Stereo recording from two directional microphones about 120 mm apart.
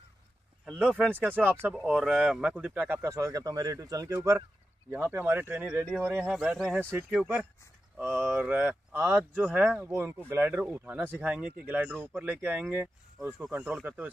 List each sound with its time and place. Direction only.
0.8 s speech: 5° left (ahead or behind)
1.3 s speech: 15° right (ahead or behind)
6.8 s speech: 15° right (ahead or behind)